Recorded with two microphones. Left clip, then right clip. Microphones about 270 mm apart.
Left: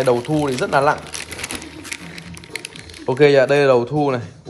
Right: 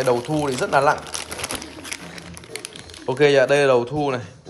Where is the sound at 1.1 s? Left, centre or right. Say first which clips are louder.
Even; right.